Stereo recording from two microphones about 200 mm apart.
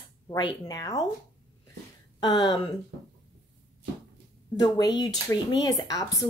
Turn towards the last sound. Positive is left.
turn(degrees=15)  # may be behind; listen again after turning